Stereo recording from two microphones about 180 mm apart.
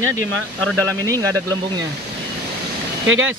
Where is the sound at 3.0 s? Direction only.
90° right.